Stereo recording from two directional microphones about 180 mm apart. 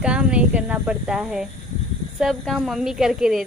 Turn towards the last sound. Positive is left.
turn(degrees=-5)  # may be behind; listen again after turning